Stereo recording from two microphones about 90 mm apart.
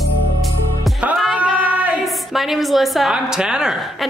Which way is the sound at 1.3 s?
15° right (ahead or behind).